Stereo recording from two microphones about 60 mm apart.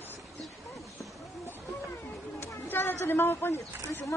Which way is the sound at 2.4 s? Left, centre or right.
Left.